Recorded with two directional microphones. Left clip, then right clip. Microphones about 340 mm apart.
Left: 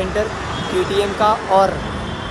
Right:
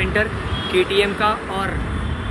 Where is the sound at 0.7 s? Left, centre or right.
Centre.